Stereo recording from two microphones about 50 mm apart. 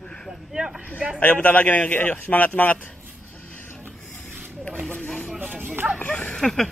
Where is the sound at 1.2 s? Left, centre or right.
Left.